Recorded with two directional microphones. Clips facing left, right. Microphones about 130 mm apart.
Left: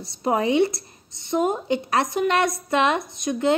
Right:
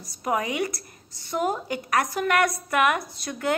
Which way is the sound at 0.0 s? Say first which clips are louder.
Left 4 dB; 30° left (ahead or behind).